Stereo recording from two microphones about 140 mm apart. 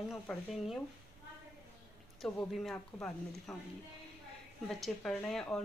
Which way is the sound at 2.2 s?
Centre (ahead or behind).